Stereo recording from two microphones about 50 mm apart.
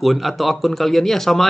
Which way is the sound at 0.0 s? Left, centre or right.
Centre.